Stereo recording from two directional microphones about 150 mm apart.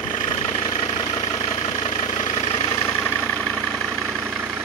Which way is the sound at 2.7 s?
20° left (ahead or behind).